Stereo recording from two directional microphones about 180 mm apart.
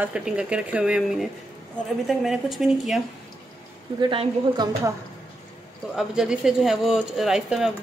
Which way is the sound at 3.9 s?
25° right (ahead or behind).